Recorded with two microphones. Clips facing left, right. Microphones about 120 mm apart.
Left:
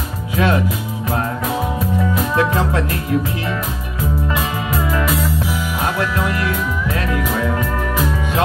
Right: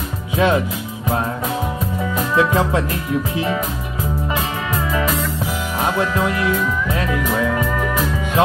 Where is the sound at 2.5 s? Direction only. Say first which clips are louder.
Right 1 dB; 15° right (ahead or behind).